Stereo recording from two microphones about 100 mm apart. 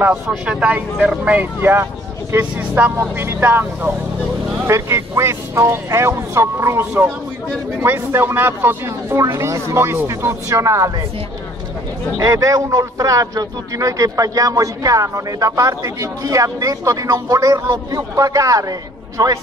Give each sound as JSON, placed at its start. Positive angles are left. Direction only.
{"t": 0.5, "sound": "speech", "side_deg": -10}
{"t": 12.2, "sound": "a man's voice", "side_deg": -40}